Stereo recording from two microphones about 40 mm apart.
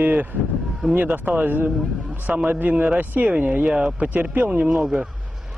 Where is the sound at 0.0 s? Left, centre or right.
Right.